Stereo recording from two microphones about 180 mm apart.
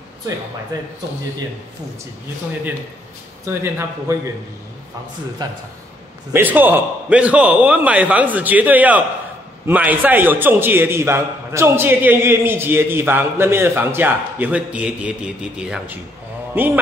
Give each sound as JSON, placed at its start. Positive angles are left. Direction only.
{"t": 0.7, "sound": "a man's voice", "side_deg": -20}
{"t": 3.4, "sound": "a man's voice", "side_deg": -15}
{"t": 5.4, "sound": "a man's voice", "side_deg": -20}
{"t": 6.3, "sound": "a man's voice", "side_deg": -10}